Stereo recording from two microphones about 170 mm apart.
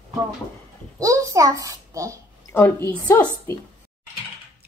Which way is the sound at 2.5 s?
15° left (ahead or behind).